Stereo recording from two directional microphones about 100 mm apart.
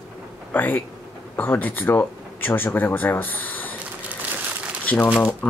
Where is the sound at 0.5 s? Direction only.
20° left (ahead or behind).